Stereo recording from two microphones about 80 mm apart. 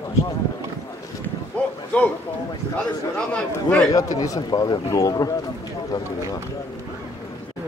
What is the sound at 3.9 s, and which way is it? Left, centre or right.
Speech, left.